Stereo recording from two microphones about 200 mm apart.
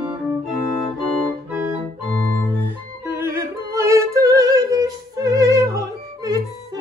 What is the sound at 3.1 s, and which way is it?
Music, 10° right (ahead or behind).